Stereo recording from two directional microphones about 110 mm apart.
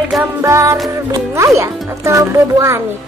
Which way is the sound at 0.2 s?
25° right (ahead or behind).